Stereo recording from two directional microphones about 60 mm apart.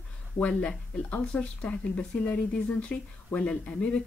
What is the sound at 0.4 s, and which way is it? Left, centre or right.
Speech, centre.